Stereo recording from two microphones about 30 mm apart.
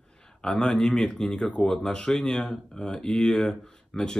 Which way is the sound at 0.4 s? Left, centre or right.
Left.